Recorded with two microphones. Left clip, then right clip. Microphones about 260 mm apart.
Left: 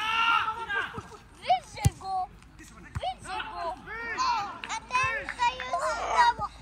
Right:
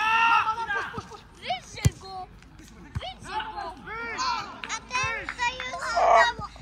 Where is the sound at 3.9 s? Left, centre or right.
Right.